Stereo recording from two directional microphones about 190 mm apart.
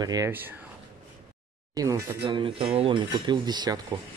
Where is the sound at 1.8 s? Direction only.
15° right (ahead or behind).